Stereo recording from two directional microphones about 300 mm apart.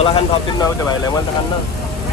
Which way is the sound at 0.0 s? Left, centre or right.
Centre.